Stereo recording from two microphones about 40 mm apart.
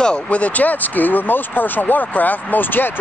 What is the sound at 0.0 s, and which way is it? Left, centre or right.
Speech, left.